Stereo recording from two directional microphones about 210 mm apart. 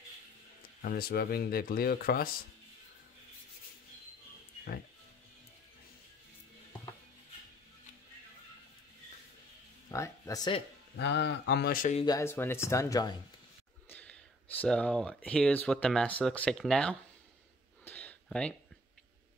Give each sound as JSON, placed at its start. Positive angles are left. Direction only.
{"t": 0.6, "sound": "speech", "side_deg": 45}
{"t": 9.8, "sound": "music", "side_deg": 15}
{"t": 11.0, "sound": "speech", "side_deg": 55}
{"t": 12.0, "sound": "speech", "side_deg": 15}
{"t": 17.8, "sound": "a sound", "side_deg": 10}